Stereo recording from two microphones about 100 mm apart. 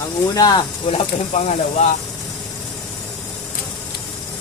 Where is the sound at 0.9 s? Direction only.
85° left.